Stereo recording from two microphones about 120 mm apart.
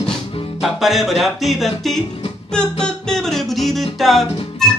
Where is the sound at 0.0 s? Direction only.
5° left (ahead or behind).